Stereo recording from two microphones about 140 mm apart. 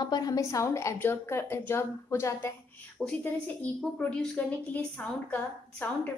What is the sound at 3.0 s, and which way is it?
A woman's voice, centre (ahead or behind).